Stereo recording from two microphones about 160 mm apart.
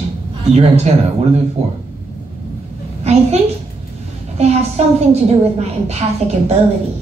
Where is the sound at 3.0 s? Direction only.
40° right (ahead or behind).